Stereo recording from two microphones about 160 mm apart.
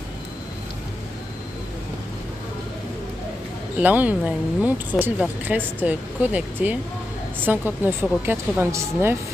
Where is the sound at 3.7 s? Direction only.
10° right (ahead or behind).